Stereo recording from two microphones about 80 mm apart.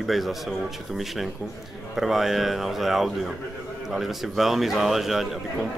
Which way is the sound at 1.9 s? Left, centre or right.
Centre.